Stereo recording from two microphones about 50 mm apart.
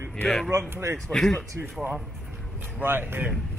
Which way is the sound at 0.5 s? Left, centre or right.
Right.